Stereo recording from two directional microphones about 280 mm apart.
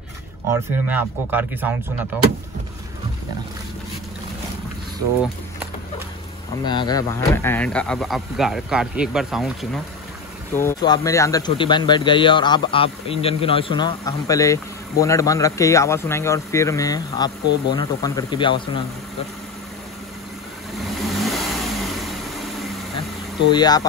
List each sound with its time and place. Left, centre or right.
0.5 s speech: centre
6.6 s speech: centre
10.5 s speech: centre
21.0 s vehicle: centre
23.5 s speech: centre